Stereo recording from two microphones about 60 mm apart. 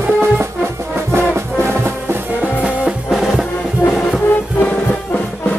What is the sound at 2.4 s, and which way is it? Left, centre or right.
Music, right.